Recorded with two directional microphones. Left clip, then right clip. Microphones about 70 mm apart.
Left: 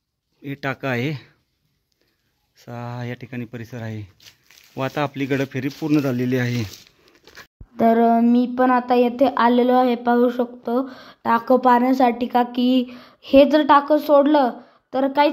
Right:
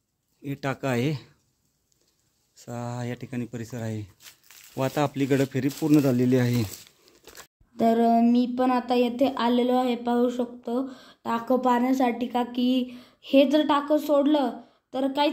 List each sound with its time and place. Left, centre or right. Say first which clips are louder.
0.4 s speech: left 4 dB; left
2.5 s speech: left 2 dB; centre
6.1 s speech: left 1 dB; centre
7.1 s a sound: left 3 dB; centre
7.7 s a woman's voice: left 5 dB; left
11.3 s a woman's voice: left 8 dB; left